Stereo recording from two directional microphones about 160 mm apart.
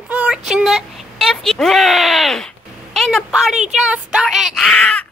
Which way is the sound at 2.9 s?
Centre (ahead or behind).